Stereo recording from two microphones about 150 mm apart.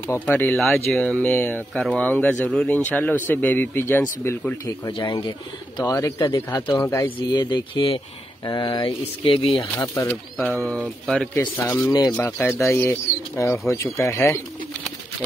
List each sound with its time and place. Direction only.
0.1 s speech: 15° left (ahead or behind); by 5.3 s 35° left (ahead or behind)
5.8 s speech: 20° left (ahead or behind)
7.2 s speech: 30° left (ahead or behind)
11.5 s speech: 20° left (ahead or behind)